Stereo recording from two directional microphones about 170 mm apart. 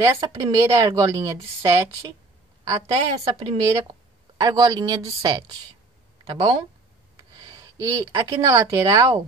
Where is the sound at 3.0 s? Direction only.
35° right (ahead or behind).